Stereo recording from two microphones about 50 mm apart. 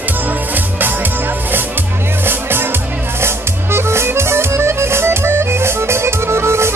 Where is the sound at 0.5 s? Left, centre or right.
Right.